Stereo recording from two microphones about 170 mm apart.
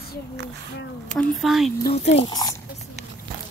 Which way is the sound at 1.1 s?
Centre (ahead or behind).